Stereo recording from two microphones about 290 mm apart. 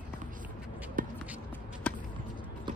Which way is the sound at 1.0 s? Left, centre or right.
Right.